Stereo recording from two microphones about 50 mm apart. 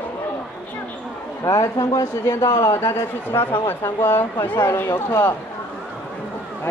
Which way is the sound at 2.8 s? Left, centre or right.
Left.